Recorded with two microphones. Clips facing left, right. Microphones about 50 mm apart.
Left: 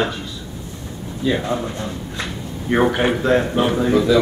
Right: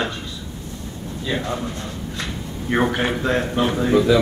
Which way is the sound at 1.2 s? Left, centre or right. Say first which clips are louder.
Left 5 dB; centre.